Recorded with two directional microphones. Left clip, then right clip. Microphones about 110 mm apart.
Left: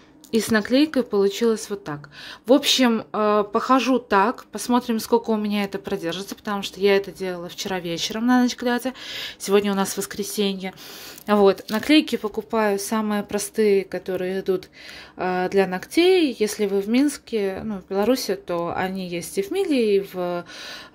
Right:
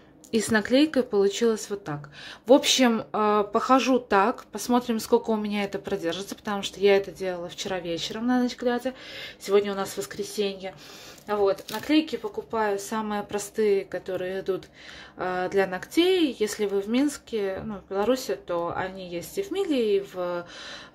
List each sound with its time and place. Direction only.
0.3 s speech: 20° left (ahead or behind); by 10.7 s 45° left (ahead or behind)
12.4 s speech: 80° left; by 18.6 s 50° left (ahead or behind)
18.6 s speech: 60° left (ahead or behind); by 20.4 s 45° left (ahead or behind)